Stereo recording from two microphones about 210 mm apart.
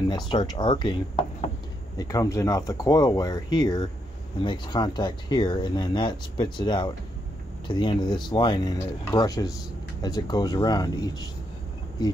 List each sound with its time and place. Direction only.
0.1 s speech: 20° left (ahead or behind)